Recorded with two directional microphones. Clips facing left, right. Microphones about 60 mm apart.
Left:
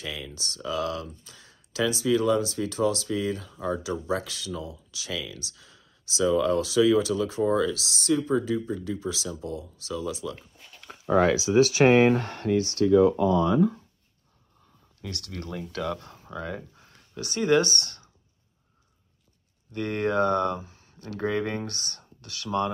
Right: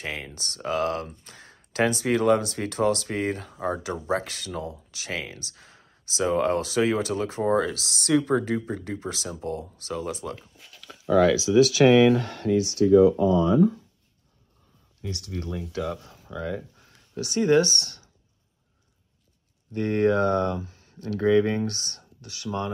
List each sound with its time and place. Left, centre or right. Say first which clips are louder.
0.0 s speech: right 2 dB; right
10.8 s speech: right 2 dB; left
15.0 s speech: right 3 dB; left
19.7 s speech: right 4 dB; left